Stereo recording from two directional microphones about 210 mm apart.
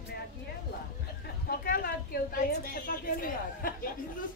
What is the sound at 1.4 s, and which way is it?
A woman's voice, 45° left (ahead or behind).